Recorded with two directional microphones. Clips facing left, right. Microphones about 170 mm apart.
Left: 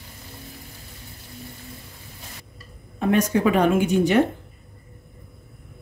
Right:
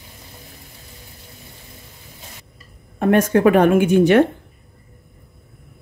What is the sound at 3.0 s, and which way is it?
A woman's voice, 55° right (ahead or behind).